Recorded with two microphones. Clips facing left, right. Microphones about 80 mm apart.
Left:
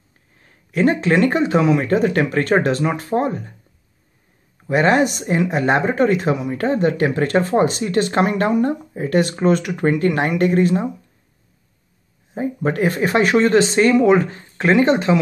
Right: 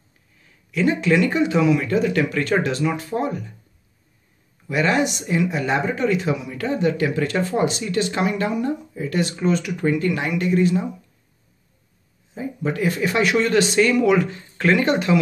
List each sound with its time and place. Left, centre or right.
0.4 s speech: left
4.6 s speech: left
12.4 s speech: left